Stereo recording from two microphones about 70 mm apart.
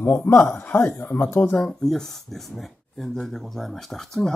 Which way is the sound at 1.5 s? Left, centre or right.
Centre.